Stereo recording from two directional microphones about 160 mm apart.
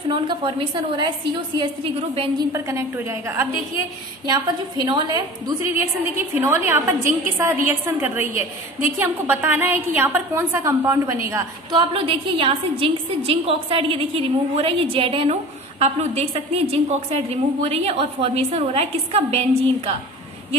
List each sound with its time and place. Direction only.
0.1 s a woman's voice: 30° right (ahead or behind)
2.5 s a woman's voice: 20° right (ahead or behind)
4.3 s a woman's voice: 25° right (ahead or behind)
11.8 s a woman's voice: 35° right (ahead or behind)